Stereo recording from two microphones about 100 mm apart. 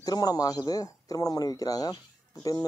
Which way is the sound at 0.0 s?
40° left (ahead or behind).